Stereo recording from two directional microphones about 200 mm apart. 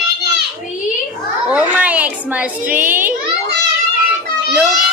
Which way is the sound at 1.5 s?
5° right (ahead or behind).